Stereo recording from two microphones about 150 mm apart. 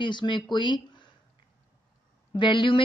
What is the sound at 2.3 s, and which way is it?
Speech, 30° left (ahead or behind).